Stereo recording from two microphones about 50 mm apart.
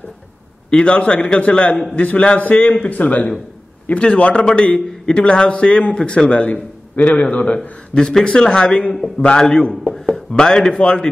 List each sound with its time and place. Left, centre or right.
0.7 s a man's voice: left